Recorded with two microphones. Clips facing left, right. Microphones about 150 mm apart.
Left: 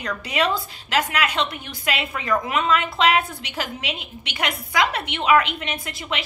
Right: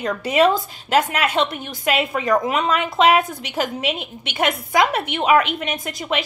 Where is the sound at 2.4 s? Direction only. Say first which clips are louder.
Right 1 dB; 45° right (ahead or behind).